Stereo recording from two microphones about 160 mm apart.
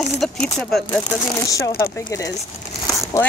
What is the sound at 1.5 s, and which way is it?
Speech, 20° left (ahead or behind).